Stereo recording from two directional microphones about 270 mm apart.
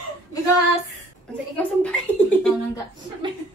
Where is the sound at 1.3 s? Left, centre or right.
Centre.